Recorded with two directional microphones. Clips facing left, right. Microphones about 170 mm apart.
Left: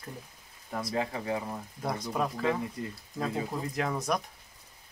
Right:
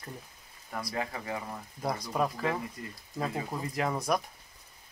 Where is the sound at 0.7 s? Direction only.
25° left (ahead or behind).